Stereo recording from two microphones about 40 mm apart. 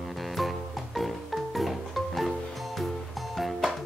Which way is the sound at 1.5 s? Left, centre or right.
Centre.